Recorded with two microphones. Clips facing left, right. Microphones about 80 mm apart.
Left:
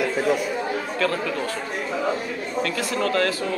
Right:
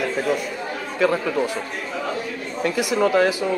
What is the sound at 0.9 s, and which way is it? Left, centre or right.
Speech, centre.